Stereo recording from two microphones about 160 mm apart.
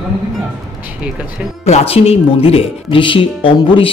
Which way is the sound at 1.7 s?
40° left (ahead or behind).